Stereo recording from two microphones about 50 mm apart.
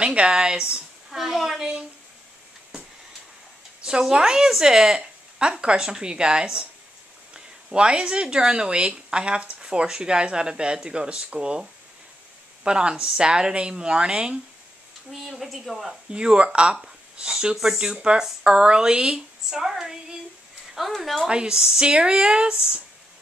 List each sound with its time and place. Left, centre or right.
0.0 s speech: right
1.1 s a woman's voice: centre
4.1 s speech: centre
15.0 s a woman's voice: centre
16.1 s speech: centre
16.8 s a sound: centre
17.6 s a woman's voice: centre
21.3 s speech: centre